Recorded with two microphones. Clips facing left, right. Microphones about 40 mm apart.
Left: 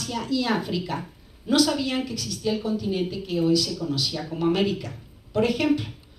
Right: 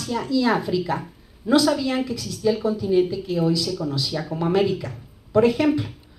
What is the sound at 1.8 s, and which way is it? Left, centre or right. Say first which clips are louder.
Speech: right 4 dB; right.